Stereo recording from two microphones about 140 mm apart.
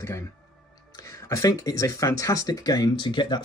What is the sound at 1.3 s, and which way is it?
Speech, 25° left (ahead or behind).